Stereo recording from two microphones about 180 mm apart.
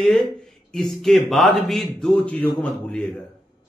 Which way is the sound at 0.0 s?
Centre (ahead or behind).